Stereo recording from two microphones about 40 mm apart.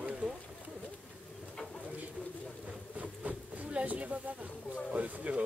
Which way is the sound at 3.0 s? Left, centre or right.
Right.